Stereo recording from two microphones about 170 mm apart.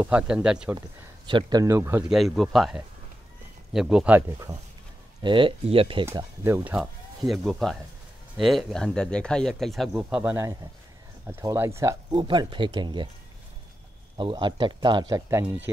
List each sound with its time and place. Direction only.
0.0 s speech: 5° right (ahead or behind)
1.2 s speech: 25° right (ahead or behind)
2.0 s speech: centre (ahead or behind)
5.2 s speech: 30° right (ahead or behind)
6.1 s speech: 15° right (ahead or behind); by 10.0 s centre (ahead or behind)
10.0 s speech: 10° right (ahead or behind); by 13.1 s 25° right (ahead or behind)
14.1 s speech: 30° right (ahead or behind); by 15.7 s 10° right (ahead or behind)